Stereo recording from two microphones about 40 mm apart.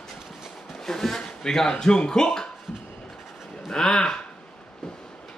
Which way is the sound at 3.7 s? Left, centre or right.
Centre.